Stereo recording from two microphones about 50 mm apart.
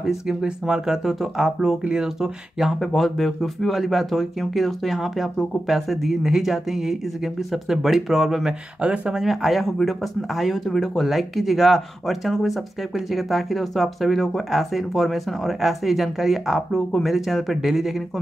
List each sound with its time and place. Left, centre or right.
0.0 s speech: centre
2.8 s speech: centre
8.8 s speech: right
9.1 s speech: centre